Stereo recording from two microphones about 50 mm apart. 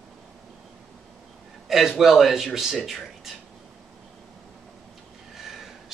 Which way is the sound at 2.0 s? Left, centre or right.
Centre.